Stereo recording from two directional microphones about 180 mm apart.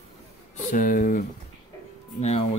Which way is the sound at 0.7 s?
50° left (ahead or behind).